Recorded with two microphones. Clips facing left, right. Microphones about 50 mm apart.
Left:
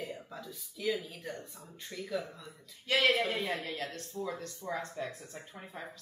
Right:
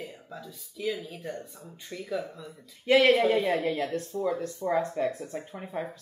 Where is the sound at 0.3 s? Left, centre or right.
Centre.